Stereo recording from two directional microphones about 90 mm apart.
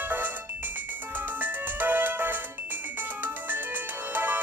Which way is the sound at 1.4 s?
20° right (ahead or behind).